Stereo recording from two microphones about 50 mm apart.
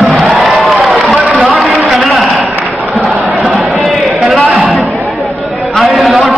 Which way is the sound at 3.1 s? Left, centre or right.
Right.